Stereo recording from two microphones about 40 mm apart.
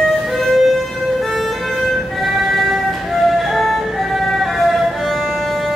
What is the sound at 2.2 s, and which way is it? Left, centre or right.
Music, centre.